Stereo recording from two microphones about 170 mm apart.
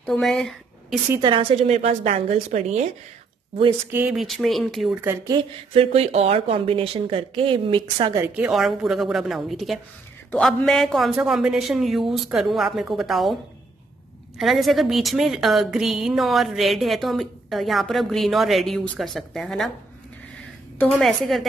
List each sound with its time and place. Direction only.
0.0 s speech: centre (ahead or behind)
1.2 s a woman's voice: 35° right (ahead or behind)
3.9 s a woman's voice: 5° right (ahead or behind)
5.3 s a woman's voice: 35° right (ahead or behind)
8.2 s a woman's voice: 5° right (ahead or behind)
14.4 s a woman's voice: centre (ahead or behind)
20.8 s a woman's voice: centre (ahead or behind)